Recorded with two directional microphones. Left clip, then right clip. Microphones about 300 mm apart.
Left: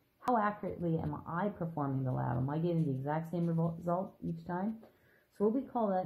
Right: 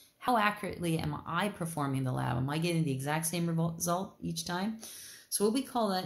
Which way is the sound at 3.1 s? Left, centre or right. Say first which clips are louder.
Right 3 dB; right.